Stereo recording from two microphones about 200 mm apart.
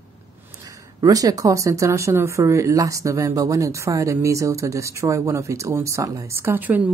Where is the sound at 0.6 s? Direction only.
15° right (ahead or behind).